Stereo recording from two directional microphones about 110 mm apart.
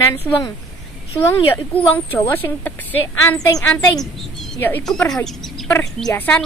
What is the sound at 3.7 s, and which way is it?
A woman's voice, 5° left (ahead or behind).